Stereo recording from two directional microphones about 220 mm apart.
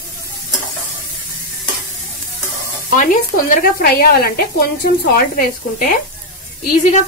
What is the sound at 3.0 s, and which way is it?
Speech, 35° left (ahead or behind).